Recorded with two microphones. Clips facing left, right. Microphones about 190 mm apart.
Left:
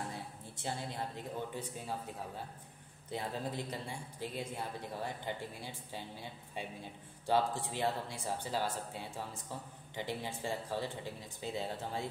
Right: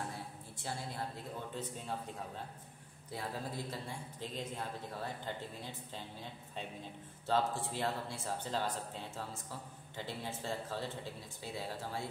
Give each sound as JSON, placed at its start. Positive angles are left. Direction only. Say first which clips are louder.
{"t": 0.7, "sound": "a man's voice", "louder": "left 2 dB", "side_deg": 20}
{"t": 1.5, "sound": "speech", "louder": "even", "side_deg": 10}
{"t": 3.1, "sound": "a man's voice", "louder": "left 3 dB", "side_deg": 20}
{"t": 4.2, "sound": "speech", "louder": "left 2 dB", "side_deg": 10}
{"t": 7.2, "sound": "a man's voice", "louder": "left 2 dB", "side_deg": 15}